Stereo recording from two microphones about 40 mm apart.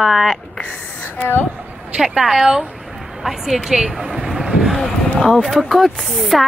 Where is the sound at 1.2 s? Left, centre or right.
Left.